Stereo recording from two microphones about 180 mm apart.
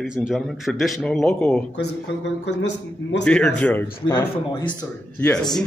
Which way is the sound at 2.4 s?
75° left (ahead or behind).